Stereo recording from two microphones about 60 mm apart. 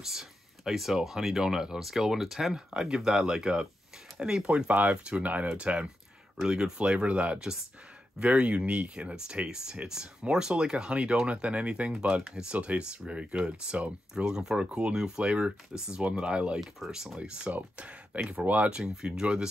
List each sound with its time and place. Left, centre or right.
0.0 s speech: centre